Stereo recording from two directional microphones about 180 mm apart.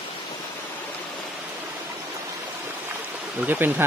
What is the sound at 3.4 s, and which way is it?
Speech, 10° right (ahead or behind).